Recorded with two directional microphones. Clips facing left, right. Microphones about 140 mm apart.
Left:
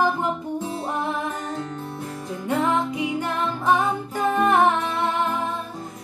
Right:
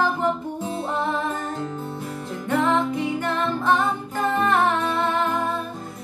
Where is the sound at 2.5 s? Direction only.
15° left (ahead or behind).